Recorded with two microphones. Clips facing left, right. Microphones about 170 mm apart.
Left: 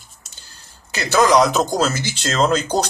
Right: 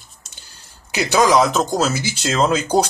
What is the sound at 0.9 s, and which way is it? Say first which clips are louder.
Speech: even; 15° right (ahead or behind).